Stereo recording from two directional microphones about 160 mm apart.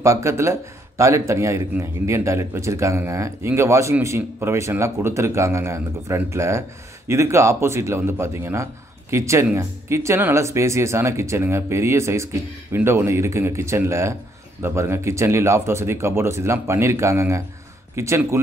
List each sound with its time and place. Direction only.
0.0 s speech: 20° right (ahead or behind)